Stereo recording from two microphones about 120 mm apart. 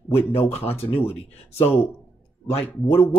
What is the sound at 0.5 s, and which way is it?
Speech, 55° left (ahead or behind).